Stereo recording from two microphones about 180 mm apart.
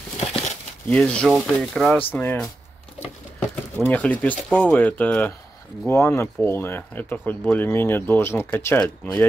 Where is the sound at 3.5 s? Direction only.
10° left (ahead or behind).